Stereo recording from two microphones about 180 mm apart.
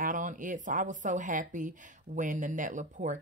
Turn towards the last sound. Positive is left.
turn(degrees=-45)  # may be behind; listen again after turning